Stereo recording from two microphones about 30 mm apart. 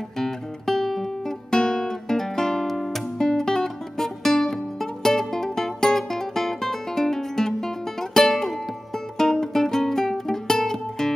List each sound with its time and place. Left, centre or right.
0.2 s music: centre
1.5 s guitar: centre
3.2 s guitar: centre
5.0 s music: centre